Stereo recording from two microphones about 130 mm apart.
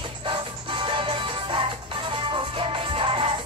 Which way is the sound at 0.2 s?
40° right (ahead or behind).